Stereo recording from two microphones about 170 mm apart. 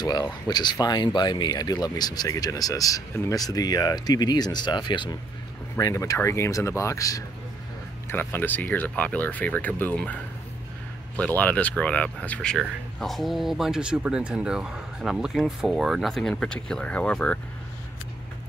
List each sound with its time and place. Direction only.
0.0 s speech: 25° left (ahead or behind); by 17.4 s 5° left (ahead or behind)